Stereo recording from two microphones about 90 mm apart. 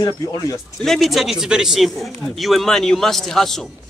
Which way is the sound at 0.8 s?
5° left (ahead or behind).